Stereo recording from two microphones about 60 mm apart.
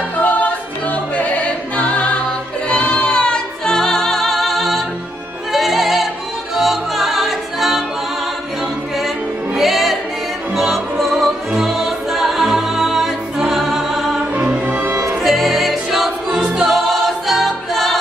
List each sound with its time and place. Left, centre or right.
0.2 s music: left; by 7.8 s centre
9.6 s music: centre
14.3 s music: right
14.9 s music: right
15.2 s music: centre
16.6 s choir: centre